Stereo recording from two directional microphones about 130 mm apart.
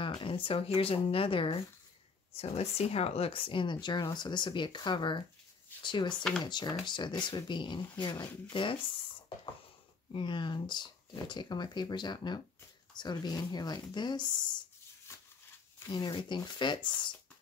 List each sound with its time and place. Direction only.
0.0 s speech: 40° left (ahead or behind)
10.1 s speech: 40° left (ahead or behind)
15.1 s a sound: 20° left (ahead or behind)
15.9 s speech: 35° left (ahead or behind)